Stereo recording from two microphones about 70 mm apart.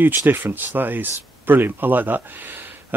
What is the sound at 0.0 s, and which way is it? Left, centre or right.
Speech, right.